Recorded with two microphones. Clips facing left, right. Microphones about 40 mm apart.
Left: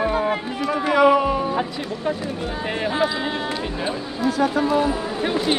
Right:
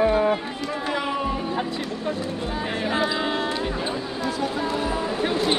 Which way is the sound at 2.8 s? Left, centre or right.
Centre.